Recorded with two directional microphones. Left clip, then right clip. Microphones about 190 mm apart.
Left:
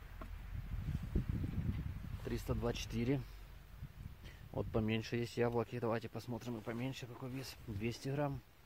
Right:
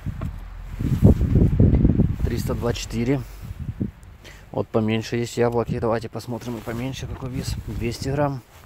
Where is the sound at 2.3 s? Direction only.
5° left (ahead or behind).